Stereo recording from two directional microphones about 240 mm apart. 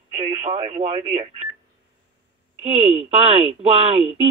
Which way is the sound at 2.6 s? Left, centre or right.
Right.